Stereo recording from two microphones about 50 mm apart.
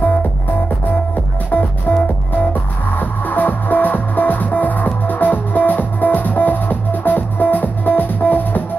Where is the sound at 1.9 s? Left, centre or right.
Left.